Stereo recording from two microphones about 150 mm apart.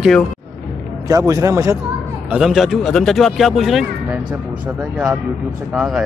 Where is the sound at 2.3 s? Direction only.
Centre (ahead or behind).